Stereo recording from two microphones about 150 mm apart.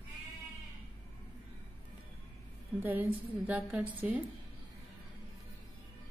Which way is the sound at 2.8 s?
10° right (ahead or behind).